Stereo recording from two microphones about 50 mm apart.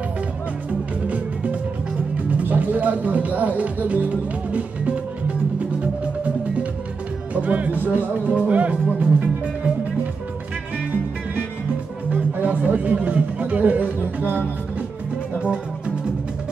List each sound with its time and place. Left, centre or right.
1.0 s music: right
2.3 s speech: right
7.4 s speech: right
12.1 s speech: right